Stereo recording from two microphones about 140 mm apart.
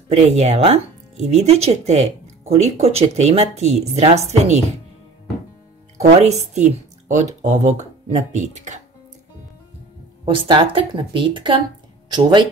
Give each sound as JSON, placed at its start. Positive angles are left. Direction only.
{"t": 0.1, "sound": "speech", "side_deg": -50}
{"t": 5.9, "sound": "speech", "side_deg": -45}
{"t": 10.2, "sound": "a woman's voice", "side_deg": -35}